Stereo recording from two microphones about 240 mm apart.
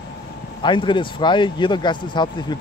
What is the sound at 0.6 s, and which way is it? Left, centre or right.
Speech, centre.